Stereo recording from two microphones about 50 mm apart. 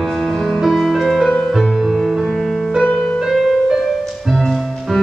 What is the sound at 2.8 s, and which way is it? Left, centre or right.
Music, left.